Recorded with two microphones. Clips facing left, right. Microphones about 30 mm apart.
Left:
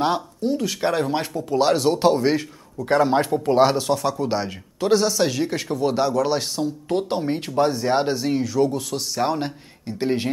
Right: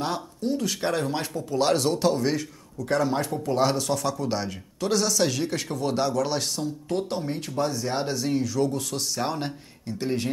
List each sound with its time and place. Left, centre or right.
0.0 s speech: left
0.5 s a man's voice: centre
6.6 s speech: left
9.9 s a man's voice: left